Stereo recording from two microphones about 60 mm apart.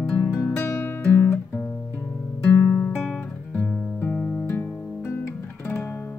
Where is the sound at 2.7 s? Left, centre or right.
Left.